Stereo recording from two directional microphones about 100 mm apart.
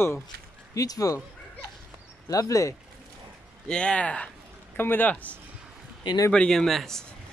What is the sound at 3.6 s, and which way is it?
Speech, 10° left (ahead or behind).